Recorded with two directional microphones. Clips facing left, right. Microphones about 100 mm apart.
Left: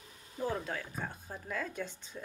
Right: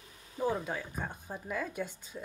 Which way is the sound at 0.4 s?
10° right (ahead or behind).